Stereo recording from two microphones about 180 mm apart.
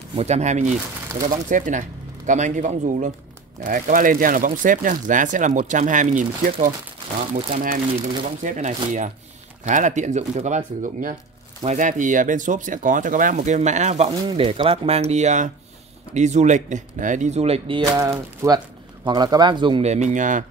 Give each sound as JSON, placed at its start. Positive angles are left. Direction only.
{"t": 0.2, "sound": "speech", "side_deg": -40}
{"t": 17.9, "sound": "speech", "side_deg": -20}